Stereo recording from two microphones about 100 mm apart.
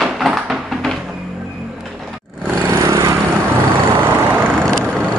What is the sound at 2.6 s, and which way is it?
Lawn mower, 30° right (ahead or behind).